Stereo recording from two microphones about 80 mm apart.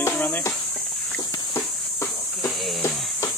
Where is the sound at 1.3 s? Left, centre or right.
Left.